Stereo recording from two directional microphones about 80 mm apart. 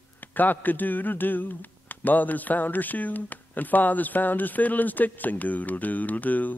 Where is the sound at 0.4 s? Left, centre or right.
Left.